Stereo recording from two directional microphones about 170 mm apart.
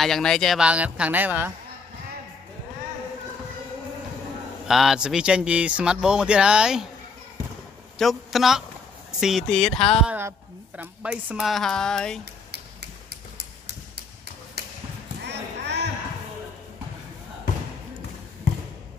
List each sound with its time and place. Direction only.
0.0 s speech: 5° left (ahead or behind)
4.6 s speech: centre (ahead or behind)
8.0 s speech: centre (ahead or behind)
10.8 s speech: 10° right (ahead or behind)
12.4 s a sound: 75° right (ahead or behind)
14.6 s basketball bounce: 70° right (ahead or behind)
15.2 s a sound: 90° right